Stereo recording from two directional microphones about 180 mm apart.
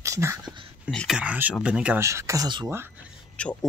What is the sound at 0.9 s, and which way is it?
Speech, centre (ahead or behind).